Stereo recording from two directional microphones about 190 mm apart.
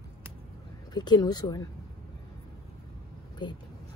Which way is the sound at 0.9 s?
20° left (ahead or behind).